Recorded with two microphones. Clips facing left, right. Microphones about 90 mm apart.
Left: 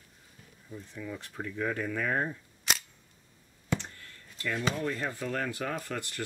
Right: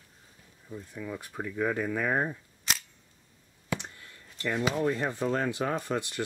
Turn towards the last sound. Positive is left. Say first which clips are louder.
# right 5 dB
turn(degrees=-20)  # may be behind; listen again after turning